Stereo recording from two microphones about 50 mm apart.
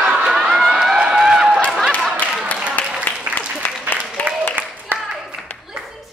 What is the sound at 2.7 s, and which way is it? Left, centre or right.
Applause, left.